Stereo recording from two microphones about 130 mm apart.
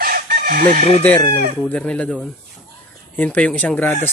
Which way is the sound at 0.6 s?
90° right.